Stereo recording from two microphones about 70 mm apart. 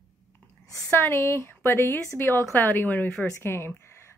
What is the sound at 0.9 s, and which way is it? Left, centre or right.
A woman's voice, left.